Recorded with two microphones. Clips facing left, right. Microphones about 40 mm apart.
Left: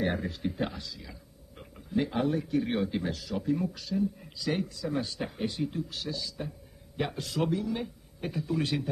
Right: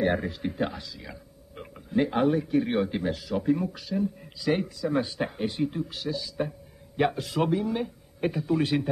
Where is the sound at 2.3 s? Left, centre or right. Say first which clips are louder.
Right 4 dB; centre.